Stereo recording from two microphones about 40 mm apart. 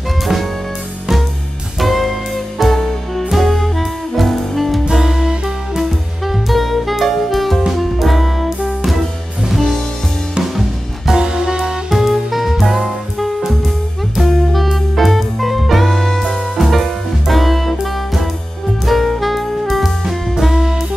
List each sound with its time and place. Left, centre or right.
1.8 s music: centre
4.9 s music: centre
5.8 s music: centre
11.1 s music: centre
11.9 s music: centre
14.2 s music: centre
18.9 s saxophone: centre